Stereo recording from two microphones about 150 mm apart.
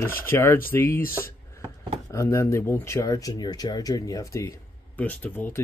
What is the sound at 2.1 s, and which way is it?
Speech, 20° left (ahead or behind).